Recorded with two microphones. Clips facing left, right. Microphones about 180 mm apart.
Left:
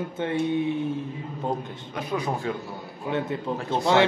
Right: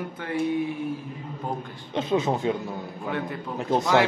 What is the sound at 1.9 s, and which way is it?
Speech, 25° right (ahead or behind).